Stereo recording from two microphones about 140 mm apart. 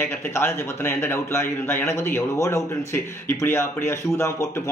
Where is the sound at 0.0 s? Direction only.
15° left (ahead or behind).